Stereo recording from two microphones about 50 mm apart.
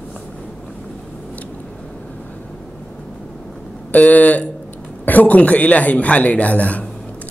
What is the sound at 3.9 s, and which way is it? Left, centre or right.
A man's voice, left.